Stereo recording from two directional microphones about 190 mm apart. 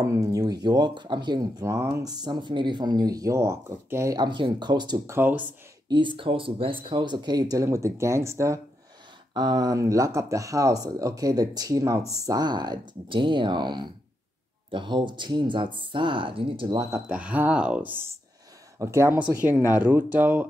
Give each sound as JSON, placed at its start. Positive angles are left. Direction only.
{"t": 0.0, "sound": "speech", "side_deg": -15}
{"t": 5.9, "sound": "speech", "side_deg": -25}
{"t": 17.1, "sound": "speech", "side_deg": -10}